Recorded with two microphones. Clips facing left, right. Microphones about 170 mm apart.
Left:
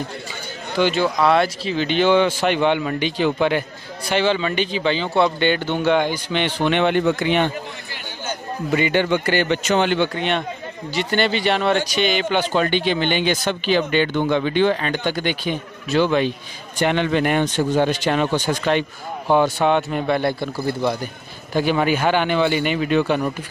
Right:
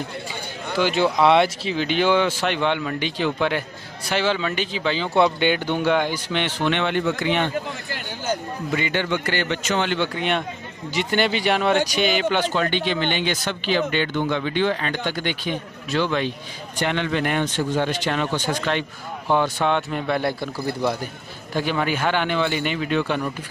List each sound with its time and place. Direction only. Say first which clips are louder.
0.7 s speech: left 2 dB; 5° right (ahead or behind)
1.0 s speech: right 4 dB; 25° right (ahead or behind); by 6.7 s centre (ahead or behind)
6.7 s speech: left 6 dB; 15° left (ahead or behind)
8.7 s speech: left 6 dB; 15° left (ahead or behind)
9.9 s speech: left 2 dB; 5° right (ahead or behind)
12.5 s speech: left 3 dB; 15° left (ahead or behind)
19.3 s speech: left 4 dB; 10° left (ahead or behind)
20.2 s speech: left 3 dB; 5° right (ahead or behind)
21.5 s speech: left 4 dB; 10° left (ahead or behind)